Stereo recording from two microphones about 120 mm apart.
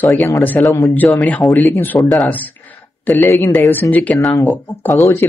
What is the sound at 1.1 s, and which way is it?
Speech, 5° left (ahead or behind).